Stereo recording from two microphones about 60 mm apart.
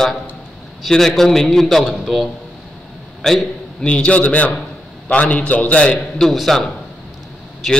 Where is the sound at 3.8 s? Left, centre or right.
Centre.